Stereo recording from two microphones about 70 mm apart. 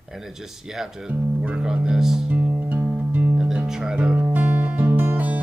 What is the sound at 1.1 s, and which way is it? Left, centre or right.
Speech, centre.